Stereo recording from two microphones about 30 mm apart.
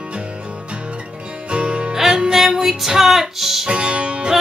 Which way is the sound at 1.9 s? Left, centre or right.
Centre.